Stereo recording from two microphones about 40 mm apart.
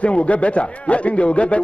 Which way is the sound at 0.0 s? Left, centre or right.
Left.